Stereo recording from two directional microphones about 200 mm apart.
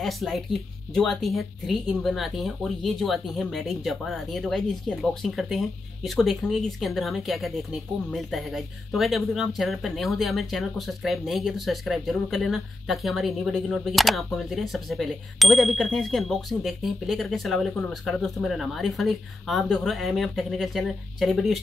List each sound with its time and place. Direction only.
0.0 s speech: centre (ahead or behind)